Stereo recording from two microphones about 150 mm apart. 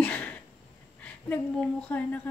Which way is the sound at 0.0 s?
10° left (ahead or behind).